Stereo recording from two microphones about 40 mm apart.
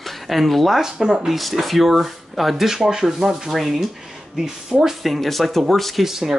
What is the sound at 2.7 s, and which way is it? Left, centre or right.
A man's voice, centre.